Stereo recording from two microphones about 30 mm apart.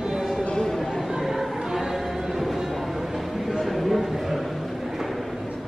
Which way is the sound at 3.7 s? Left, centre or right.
Centre.